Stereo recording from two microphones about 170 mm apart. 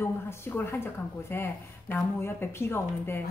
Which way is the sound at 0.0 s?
15° left (ahead or behind).